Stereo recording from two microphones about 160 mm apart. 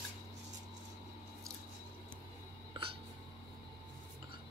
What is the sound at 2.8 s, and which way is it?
Hiccup, 30° right (ahead or behind).